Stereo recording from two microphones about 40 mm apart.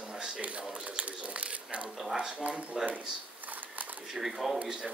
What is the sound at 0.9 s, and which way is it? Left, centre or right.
Crumpling, right.